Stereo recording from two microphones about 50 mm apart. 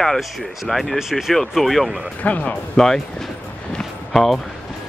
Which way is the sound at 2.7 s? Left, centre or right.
Centre.